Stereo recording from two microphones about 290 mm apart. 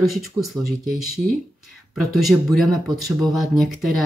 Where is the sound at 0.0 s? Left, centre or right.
Centre.